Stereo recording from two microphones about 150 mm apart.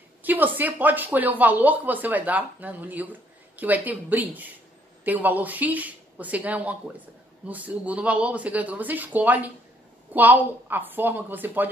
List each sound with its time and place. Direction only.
0.2 s speech: 10° right (ahead or behind)